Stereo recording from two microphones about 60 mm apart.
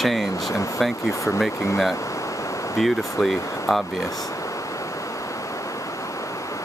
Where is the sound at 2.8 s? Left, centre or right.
Centre.